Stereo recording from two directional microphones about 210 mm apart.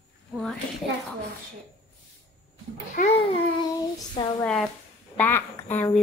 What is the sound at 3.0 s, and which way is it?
Babbling, 30° left (ahead or behind).